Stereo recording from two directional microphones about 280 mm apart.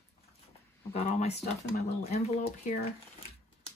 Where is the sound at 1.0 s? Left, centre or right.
Left.